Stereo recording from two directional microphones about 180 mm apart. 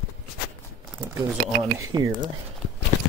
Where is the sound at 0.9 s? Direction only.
5° right (ahead or behind).